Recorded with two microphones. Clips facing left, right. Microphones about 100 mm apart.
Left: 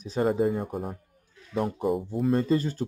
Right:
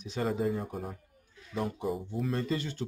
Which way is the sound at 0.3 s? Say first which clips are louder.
Left 4 dB; 50° left (ahead or behind).